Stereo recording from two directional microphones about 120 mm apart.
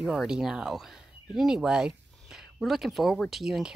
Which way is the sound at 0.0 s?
5° right (ahead or behind).